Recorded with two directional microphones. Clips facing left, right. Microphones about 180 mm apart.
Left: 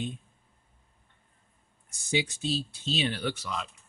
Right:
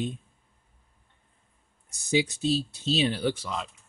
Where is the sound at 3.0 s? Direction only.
30° right (ahead or behind).